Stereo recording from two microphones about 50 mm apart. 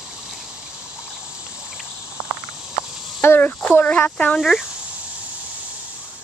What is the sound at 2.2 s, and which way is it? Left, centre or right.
Cricket, centre.